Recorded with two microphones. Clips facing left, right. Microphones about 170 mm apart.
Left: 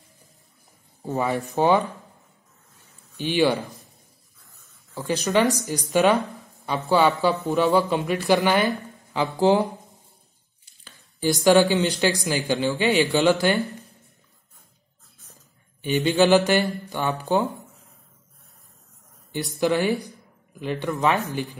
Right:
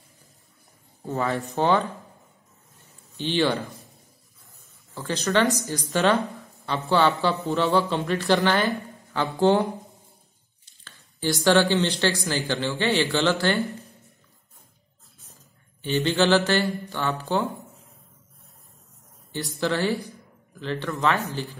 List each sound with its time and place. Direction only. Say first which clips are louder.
1.0 s speech: left 2 dB; 15° left (ahead or behind)
3.2 s speech: left 2 dB; 10° left (ahead or behind)
4.9 s speech: left 2 dB; 15° left (ahead or behind)
15.8 s speech: left 3 dB; 15° left (ahead or behind)
19.3 s speech: left 4 dB; 15° left (ahead or behind)